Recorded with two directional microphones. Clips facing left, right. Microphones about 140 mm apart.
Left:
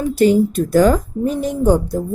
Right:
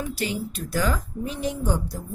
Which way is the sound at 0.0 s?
45° left (ahead or behind).